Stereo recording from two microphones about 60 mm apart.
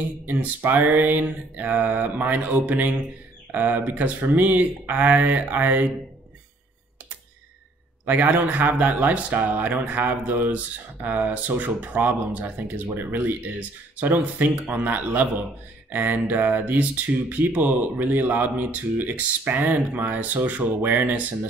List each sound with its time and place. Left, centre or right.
0.3 s speech: right
8.0 s speech: right